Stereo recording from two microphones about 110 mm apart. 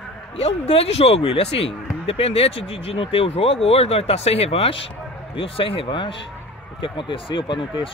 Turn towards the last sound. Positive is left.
turn(degrees=45)  # may be behind; listen again after turning